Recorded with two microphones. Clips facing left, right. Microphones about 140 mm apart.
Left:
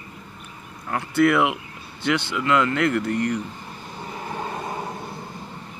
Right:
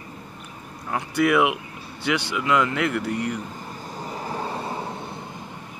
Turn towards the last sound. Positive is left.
turn(degrees=-30)  # may be behind; listen again after turning